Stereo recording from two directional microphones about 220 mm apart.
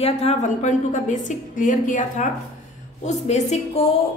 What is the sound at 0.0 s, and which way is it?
A woman's voice, 25° left (ahead or behind).